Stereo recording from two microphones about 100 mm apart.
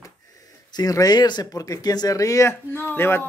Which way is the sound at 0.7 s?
40° left (ahead or behind).